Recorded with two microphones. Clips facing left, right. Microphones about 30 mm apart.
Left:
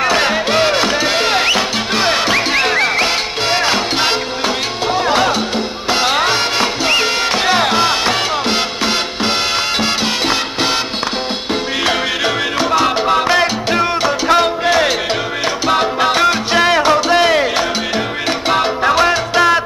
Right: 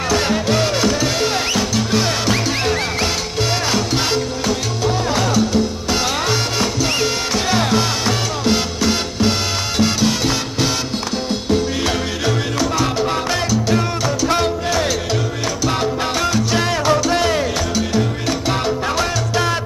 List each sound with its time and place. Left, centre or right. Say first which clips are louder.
0.0 s music: left 4 dB; left
12.5 s salsa music: left 4 dB; left
15.6 s music: left 6 dB; left
18.5 s salsa music: left 8 dB; left